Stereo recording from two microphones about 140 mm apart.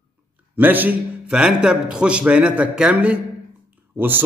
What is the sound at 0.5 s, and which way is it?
Speech, 15° right (ahead or behind).